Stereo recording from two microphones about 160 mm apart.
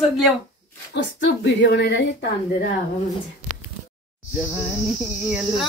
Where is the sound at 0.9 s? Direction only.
90° left.